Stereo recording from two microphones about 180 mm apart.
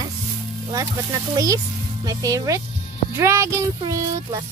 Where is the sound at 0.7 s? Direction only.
20° right (ahead or behind).